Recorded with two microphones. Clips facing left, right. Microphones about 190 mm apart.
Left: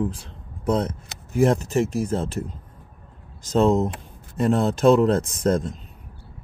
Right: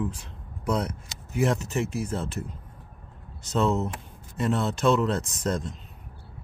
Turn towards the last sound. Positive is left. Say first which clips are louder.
# left 7 dB
turn(degrees=50)  # may be behind; listen again after turning